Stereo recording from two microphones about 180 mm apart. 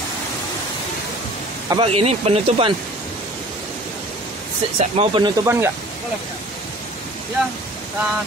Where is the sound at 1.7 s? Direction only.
30° right (ahead or behind).